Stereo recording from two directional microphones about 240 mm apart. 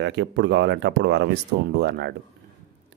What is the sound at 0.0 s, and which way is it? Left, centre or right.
Speech, right.